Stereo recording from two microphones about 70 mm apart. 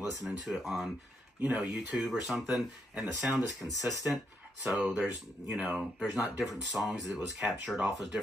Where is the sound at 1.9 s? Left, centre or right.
Centre.